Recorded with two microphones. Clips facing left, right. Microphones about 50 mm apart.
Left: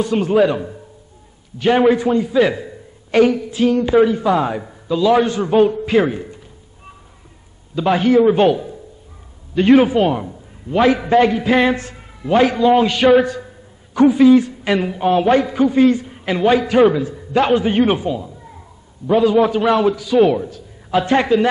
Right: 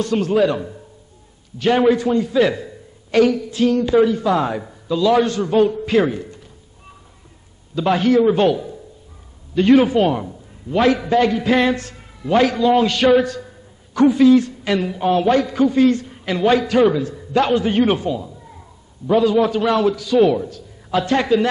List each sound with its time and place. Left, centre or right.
0.0 s a man's voice: centre
7.7 s a man's voice: centre